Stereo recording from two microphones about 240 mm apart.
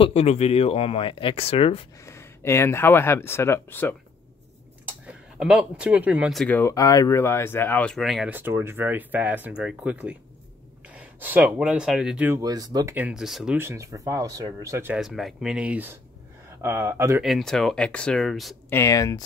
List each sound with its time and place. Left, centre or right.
0.0 s speech: left
2.0 s speech: centre
5.0 s speech: centre
17.2 s speech: centre
18.8 s speech: centre